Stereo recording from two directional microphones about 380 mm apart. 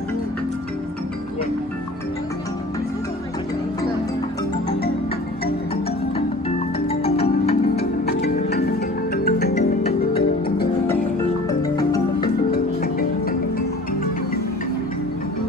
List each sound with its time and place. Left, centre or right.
6.9 s music: centre
12.4 s music: left